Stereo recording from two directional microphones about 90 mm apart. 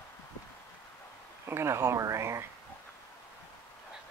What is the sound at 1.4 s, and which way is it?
Speech, 30° right (ahead or behind).